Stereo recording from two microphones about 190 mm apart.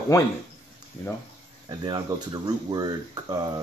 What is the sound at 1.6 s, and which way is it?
Speech, 20° right (ahead or behind).